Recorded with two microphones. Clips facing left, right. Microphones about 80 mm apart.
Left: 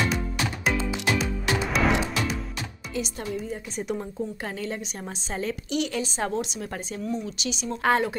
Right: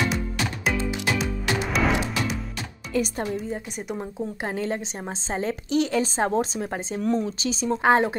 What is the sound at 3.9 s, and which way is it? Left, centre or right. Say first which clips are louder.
A woman's voice: right 1 dB; right.